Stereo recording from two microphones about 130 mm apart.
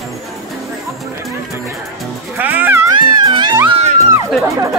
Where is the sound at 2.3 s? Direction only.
15° right (ahead or behind).